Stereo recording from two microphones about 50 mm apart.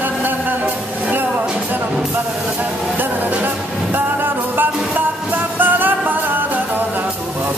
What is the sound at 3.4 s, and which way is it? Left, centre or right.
Music, right.